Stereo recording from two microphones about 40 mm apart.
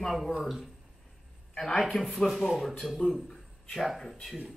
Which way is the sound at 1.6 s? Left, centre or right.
Centre.